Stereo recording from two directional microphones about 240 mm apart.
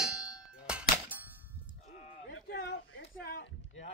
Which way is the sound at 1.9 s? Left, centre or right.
Left.